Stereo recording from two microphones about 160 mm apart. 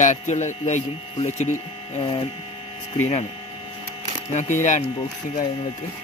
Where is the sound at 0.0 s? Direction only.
45° left (ahead or behind).